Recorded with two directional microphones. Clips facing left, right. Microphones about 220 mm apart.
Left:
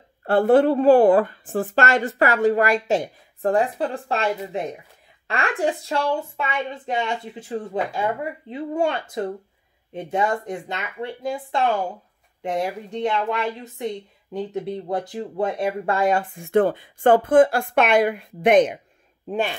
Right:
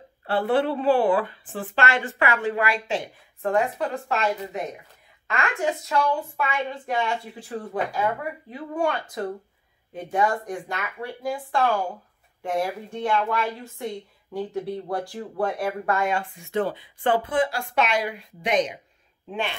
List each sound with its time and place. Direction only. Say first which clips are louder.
0.2 s a woman's voice: left 7 dB; 45° left (ahead or behind)
19.2 s speech: left 5 dB; 40° left (ahead or behind)